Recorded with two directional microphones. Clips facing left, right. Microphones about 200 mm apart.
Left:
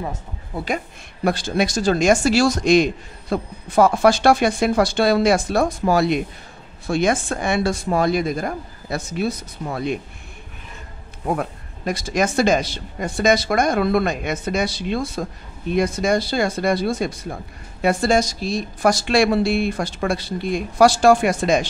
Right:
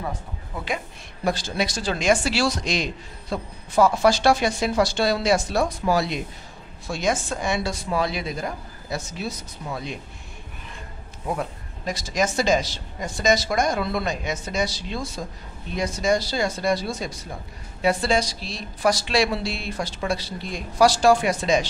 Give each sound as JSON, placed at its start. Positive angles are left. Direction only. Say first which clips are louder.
{"t": 1.2, "sound": "speech", "louder": "left 5 dB", "side_deg": 55}
{"t": 11.2, "sound": "speech", "louder": "left 4 dB", "side_deg": 55}